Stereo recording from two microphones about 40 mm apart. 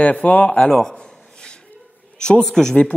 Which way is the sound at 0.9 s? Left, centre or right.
Left.